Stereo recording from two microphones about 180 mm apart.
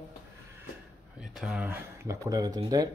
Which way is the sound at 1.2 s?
Centre (ahead or behind).